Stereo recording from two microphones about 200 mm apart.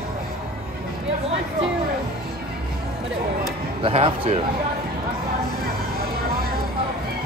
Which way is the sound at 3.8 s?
30° right (ahead or behind).